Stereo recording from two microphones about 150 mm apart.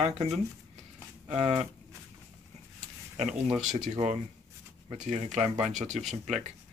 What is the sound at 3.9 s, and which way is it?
Speech, 45° right (ahead or behind).